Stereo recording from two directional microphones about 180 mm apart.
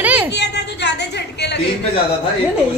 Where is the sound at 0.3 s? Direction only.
75° left (ahead or behind).